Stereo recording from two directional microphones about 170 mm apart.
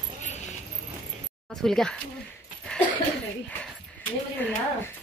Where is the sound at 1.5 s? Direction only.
Centre (ahead or behind).